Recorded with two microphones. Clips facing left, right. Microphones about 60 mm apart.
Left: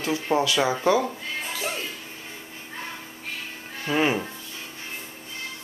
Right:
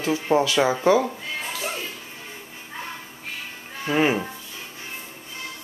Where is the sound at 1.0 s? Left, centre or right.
Centre.